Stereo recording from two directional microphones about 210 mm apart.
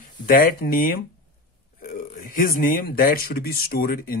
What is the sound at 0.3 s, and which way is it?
A man's voice, 45° left (ahead or behind).